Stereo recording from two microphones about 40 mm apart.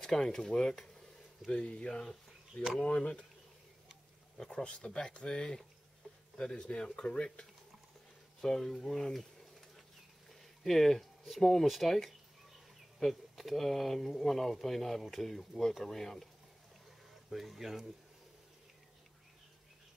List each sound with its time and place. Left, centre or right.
0.0 s speech: centre
4.6 s speech: left
6.5 s speech: left
8.4 s speech: centre
10.4 s speech: centre
17.3 s speech: centre